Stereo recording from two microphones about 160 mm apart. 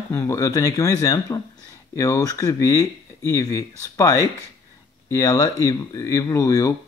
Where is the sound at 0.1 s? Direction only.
15° left (ahead or behind).